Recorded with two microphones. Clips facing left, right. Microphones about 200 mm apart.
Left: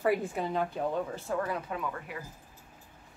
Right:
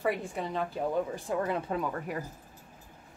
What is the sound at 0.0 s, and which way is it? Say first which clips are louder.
Speech: left 3 dB; centre (ahead or behind).